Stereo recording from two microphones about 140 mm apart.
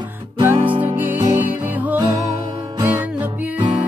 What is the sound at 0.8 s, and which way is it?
Music, 15° right (ahead or behind).